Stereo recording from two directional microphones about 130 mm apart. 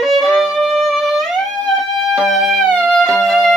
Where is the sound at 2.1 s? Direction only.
Centre (ahead or behind).